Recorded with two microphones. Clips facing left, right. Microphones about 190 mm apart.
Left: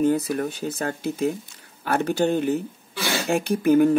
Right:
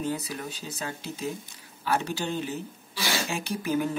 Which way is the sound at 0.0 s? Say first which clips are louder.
Left 10 dB; 50° left (ahead or behind).